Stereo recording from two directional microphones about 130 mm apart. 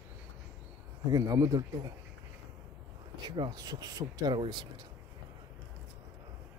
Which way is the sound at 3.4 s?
30° right (ahead or behind).